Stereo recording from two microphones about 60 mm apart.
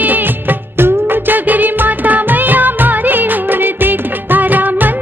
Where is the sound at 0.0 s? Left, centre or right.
Right.